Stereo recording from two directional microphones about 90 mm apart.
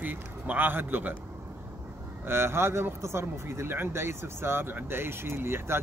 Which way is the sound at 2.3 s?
30° right (ahead or behind).